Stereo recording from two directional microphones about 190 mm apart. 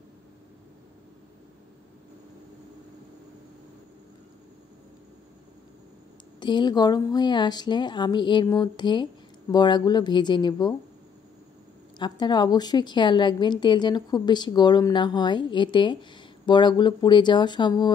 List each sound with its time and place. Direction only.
6.4 s a woman's voice: 25° left (ahead or behind)
12.0 s a woman's voice: 20° left (ahead or behind)